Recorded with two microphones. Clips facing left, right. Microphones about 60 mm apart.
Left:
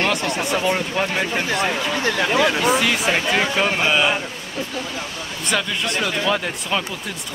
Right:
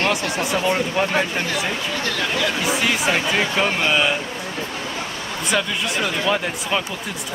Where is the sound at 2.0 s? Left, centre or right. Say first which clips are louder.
Left 5 dB; left.